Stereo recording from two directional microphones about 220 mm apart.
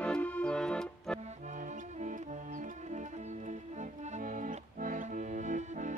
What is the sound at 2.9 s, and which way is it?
Music, 30° right (ahead or behind).